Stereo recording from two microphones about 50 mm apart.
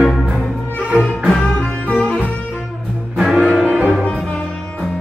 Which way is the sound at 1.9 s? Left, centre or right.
Left.